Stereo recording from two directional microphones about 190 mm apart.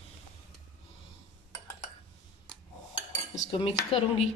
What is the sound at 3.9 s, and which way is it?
Speech, 30° left (ahead or behind).